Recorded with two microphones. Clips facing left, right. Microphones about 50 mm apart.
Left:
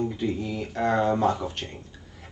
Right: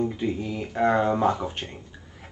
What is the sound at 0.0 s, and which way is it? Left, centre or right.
Speech, centre.